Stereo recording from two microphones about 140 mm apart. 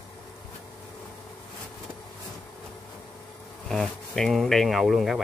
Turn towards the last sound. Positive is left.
turn(degrees=0)  # may be behind; listen again after turning